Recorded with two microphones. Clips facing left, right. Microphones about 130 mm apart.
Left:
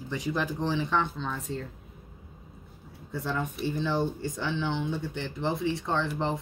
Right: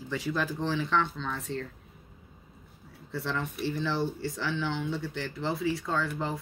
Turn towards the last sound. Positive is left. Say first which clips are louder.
# left 2 dB
turn(degrees=25)  # may be behind; listen again after turning